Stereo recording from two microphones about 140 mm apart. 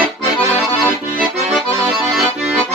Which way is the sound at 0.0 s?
15° right (ahead or behind).